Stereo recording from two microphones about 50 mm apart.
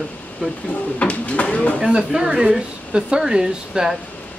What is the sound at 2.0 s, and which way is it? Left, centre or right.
Speech, centre.